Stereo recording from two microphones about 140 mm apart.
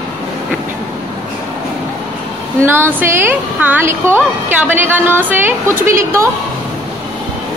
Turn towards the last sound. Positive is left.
turn(degrees=-20)  # may be behind; listen again after turning